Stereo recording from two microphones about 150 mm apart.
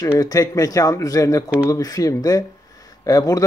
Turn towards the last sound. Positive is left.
turn(degrees=25)  # may be behind; listen again after turning